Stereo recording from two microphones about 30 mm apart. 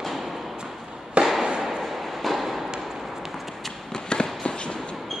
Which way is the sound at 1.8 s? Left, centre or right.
Centre.